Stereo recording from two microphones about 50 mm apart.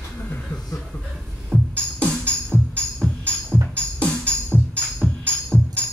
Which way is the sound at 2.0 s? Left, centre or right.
Left.